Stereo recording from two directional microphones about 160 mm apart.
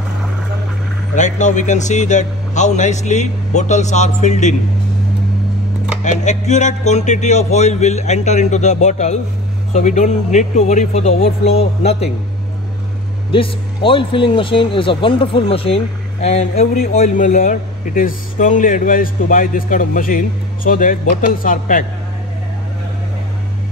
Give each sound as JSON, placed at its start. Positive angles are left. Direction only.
{"t": 1.1, "sound": "a man's voice", "side_deg": 50}
{"t": 6.0, "sound": "a man's voice", "side_deg": 45}
{"t": 13.3, "sound": "speech", "side_deg": 35}